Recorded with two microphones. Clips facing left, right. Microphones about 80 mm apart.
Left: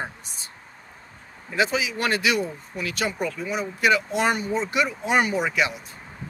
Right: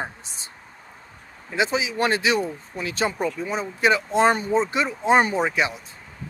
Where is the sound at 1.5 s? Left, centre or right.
Right.